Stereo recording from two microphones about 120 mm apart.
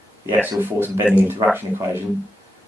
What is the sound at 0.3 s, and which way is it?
Speech, 15° right (ahead or behind).